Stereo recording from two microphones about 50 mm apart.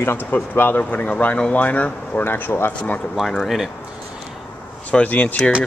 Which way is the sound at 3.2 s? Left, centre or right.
Centre.